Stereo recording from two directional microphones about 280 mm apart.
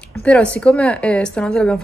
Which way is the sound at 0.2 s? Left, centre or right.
Centre.